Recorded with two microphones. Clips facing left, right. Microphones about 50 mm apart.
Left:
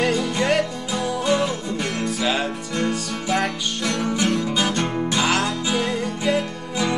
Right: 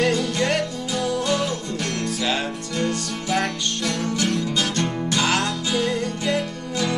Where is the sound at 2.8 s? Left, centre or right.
Centre.